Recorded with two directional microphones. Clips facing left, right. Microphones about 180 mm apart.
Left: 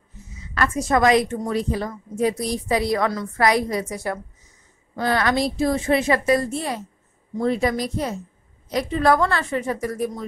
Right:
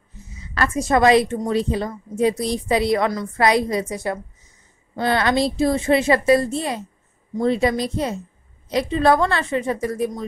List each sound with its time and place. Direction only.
0.6 s a woman's voice: 25° right (ahead or behind)
3.1 s a woman's voice: 15° right (ahead or behind)